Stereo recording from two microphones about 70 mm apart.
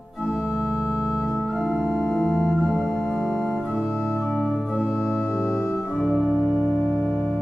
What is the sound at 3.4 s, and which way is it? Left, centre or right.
Organ, centre.